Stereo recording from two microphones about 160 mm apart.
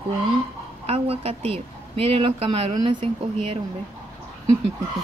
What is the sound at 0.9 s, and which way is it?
Speech, 40° right (ahead or behind).